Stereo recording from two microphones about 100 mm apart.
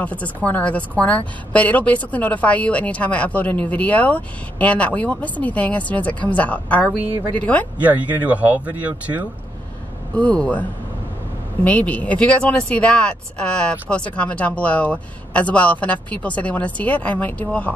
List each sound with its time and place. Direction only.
0.0 s a woman's voice: 15° left (ahead or behind)
7.8 s speech: 15° right (ahead or behind)
10.1 s a woman's voice: 10° left (ahead or behind)